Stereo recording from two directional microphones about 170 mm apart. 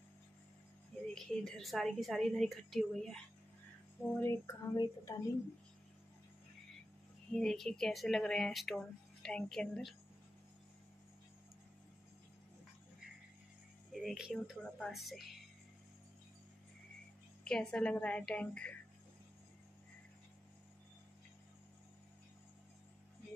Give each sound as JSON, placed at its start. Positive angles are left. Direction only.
{"t": 1.1, "sound": "speech", "side_deg": 5}
{"t": 4.2, "sound": "speech", "side_deg": 15}
{"t": 7.3, "sound": "speech", "side_deg": 0}
{"t": 13.9, "sound": "speech", "side_deg": 0}
{"t": 17.5, "sound": "speech", "side_deg": 5}